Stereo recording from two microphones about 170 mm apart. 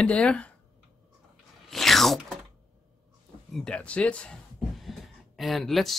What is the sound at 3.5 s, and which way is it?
Speech, 5° left (ahead or behind).